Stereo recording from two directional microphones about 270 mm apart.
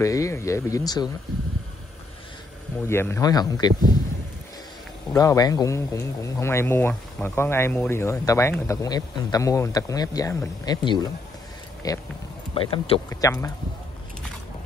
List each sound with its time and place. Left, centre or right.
0.0 s speech: centre
2.9 s speech: centre
5.1 s speech: centre